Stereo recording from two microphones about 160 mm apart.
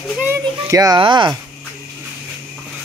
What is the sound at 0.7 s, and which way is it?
Speech, 25° right (ahead or behind).